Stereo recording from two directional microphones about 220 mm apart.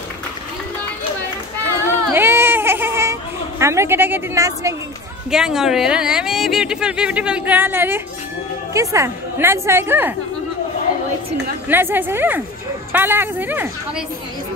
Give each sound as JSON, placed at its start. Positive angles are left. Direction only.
{"t": 2.1, "sound": "baby cry", "side_deg": -10}
{"t": 5.3, "sound": "a woman's voice", "side_deg": 0}
{"t": 11.7, "sound": "a woman's voice", "side_deg": -10}